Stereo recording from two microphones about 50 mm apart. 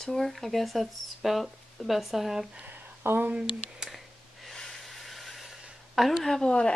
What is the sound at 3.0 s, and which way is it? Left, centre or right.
Speech, right.